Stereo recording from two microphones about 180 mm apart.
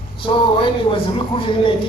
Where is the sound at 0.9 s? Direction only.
30° left (ahead or behind).